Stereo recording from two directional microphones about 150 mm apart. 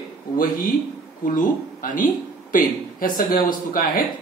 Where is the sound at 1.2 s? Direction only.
60° left (ahead or behind).